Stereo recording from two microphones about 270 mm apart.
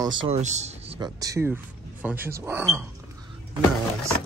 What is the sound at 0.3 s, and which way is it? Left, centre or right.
Speech, right.